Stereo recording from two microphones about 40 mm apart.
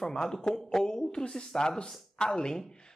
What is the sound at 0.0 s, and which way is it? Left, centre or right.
Speech, centre.